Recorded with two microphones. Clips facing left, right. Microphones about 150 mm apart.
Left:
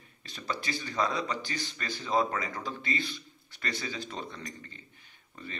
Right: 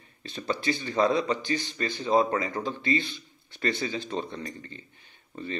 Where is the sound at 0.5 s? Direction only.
25° right (ahead or behind).